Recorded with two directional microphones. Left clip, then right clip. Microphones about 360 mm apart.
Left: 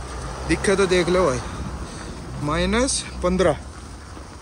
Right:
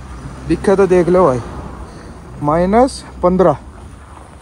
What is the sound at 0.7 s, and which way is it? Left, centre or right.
Speech, centre.